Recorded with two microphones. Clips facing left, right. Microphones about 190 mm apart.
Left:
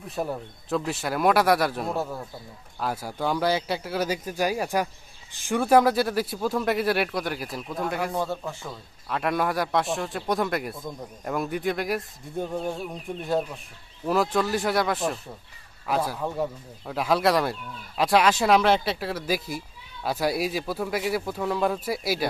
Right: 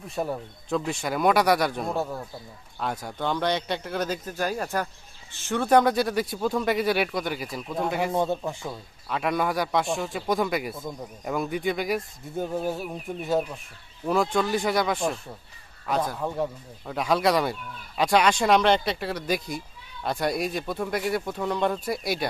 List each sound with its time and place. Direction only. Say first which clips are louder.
0.0 s a man's voice: even; centre (ahead or behind)
8.1 s speech: right 3 dB; 20° right (ahead or behind)
9.1 s speech: even; centre (ahead or behind)